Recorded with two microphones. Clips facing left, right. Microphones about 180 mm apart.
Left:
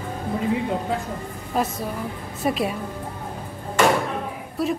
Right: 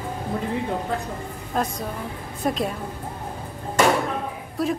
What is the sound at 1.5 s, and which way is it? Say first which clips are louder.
A woman's voice: left 2 dB; 5° left (ahead or behind).